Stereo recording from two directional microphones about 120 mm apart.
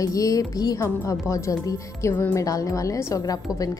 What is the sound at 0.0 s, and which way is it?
A woman's voice, 30° left (ahead or behind).